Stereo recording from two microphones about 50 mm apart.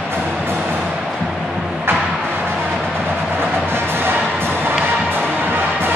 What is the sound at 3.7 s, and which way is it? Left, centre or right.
Music, right.